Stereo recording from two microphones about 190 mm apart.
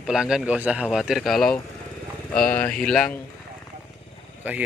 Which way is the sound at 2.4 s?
45° left (ahead or behind).